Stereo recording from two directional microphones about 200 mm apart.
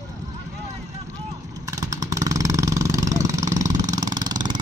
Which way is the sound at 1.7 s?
15° right (ahead or behind).